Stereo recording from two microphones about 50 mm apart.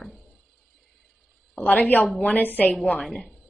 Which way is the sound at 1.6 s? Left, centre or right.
Left.